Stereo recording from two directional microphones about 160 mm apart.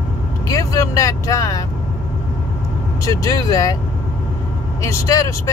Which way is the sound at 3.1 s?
20° left (ahead or behind).